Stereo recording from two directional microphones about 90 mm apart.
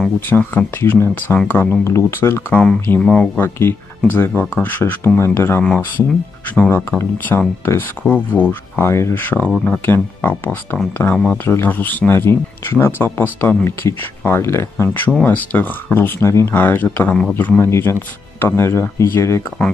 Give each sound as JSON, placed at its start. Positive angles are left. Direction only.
{"t": 0.3, "sound": "speech", "side_deg": 20}
{"t": 3.4, "sound": "speech", "side_deg": 25}